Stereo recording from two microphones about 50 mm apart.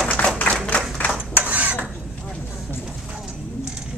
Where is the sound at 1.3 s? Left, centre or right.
Right.